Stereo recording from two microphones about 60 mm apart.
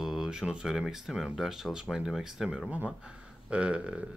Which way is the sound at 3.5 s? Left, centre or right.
Centre.